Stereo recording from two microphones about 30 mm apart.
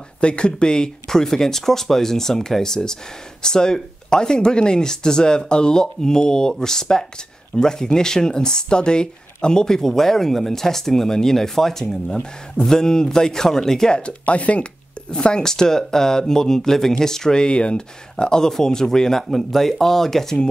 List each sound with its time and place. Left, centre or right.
0.2 s speech: left; by 13.8 s centre
13.8 s speech: left
14.2 s speech: left
14.6 s speech: left
15.4 s speech: centre; by 17.8 s left
18.1 s speech: left